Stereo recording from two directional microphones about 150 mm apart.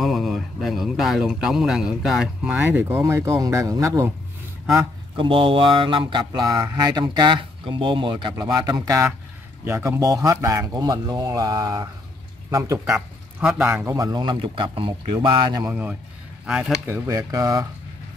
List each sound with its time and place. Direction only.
0.0 s speech: centre (ahead or behind); by 4.1 s 20° right (ahead or behind)
5.1 s speech: 35° right (ahead or behind); by 12.8 s 20° right (ahead or behind)
12.8 s speech: 5° right (ahead or behind)
13.8 s speech: 25° right (ahead or behind)
15.7 s a man's voice: 10° right (ahead or behind)
16.8 s speech: 20° right (ahead or behind)